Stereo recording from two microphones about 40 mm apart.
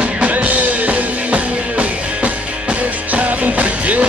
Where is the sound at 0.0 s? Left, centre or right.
Right.